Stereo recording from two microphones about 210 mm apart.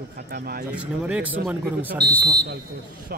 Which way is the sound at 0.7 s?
5° right (ahead or behind).